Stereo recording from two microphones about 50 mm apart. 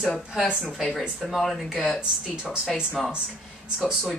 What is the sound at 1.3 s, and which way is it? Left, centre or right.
Speech, centre.